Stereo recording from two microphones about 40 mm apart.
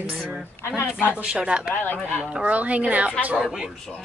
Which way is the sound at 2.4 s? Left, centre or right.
Right.